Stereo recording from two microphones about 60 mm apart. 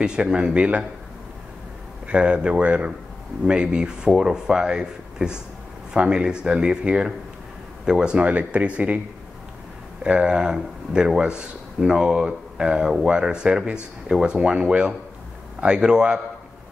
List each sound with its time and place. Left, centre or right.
0.0 s speech: centre
2.0 s speech: centre
10.0 s speech: centre